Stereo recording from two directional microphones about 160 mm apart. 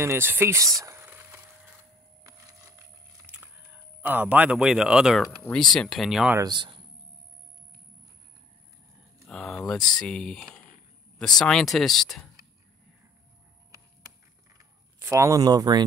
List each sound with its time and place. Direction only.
0.0 s speech: 15° right (ahead or behind)
0.7 s a sound: 15° right (ahead or behind)
3.3 s biting: 10° right (ahead or behind)
4.0 s speech: 10° right (ahead or behind)
6.3 s speech: 25° right (ahead or behind)
9.2 s speech: centre (ahead or behind)
9.8 s speech: 25° left (ahead or behind)
10.0 s speech: 5° left (ahead or behind)
14.5 s a sound: 20° right (ahead or behind)